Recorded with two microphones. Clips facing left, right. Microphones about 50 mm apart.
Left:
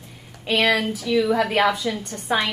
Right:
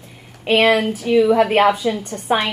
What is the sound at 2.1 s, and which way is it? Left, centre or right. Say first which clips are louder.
Speech: right 2 dB; right.